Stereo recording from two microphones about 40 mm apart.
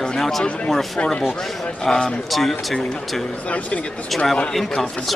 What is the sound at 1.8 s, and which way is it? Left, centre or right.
Speech, centre.